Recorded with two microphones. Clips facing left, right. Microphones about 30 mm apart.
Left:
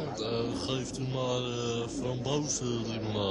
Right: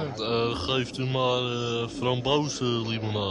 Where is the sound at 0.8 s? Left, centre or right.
Right.